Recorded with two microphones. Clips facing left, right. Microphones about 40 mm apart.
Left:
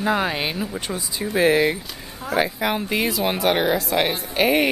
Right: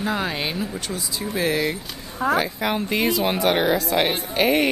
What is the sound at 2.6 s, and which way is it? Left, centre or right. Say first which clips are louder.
A woman's voice: even; centre.